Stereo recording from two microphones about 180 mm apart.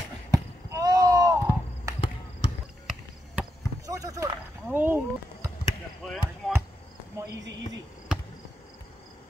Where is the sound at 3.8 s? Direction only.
20° right (ahead or behind).